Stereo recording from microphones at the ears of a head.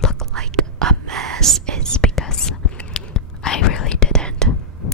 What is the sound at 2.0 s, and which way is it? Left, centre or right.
Whispering, left.